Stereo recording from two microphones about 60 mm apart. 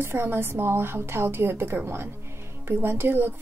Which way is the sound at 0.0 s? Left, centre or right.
Right.